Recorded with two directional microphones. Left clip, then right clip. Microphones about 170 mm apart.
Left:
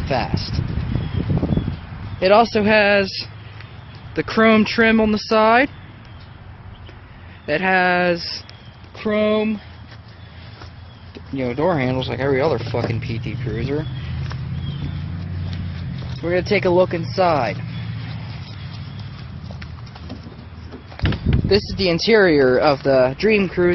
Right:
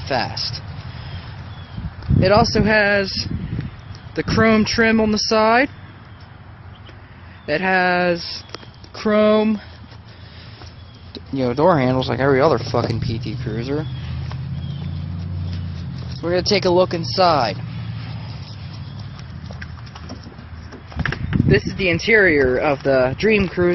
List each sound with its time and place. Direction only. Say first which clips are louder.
0.1 s speech: right 1 dB; centre (ahead or behind)
2.1 s speech: left 1 dB; 5° left (ahead or behind)
4.1 s speech: left 1 dB; centre (ahead or behind)
7.4 s speech: even; centre (ahead or behind)
8.9 s speech: right 3 dB; 35° right (ahead or behind)
11.3 s speech: right 4 dB; 25° right (ahead or behind)
16.2 s speech: even; 5° right (ahead or behind)
21.5 s speech: even; 20° left (ahead or behind)
22.9 s speech: left 1 dB; centre (ahead or behind)